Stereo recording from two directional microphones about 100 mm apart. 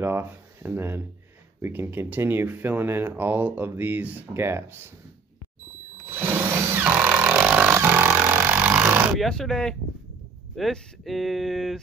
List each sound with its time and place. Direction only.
0.0 s speech: 25° right (ahead or behind)
6.0 s a sound: 20° right (ahead or behind)
9.2 s speech: 5° left (ahead or behind)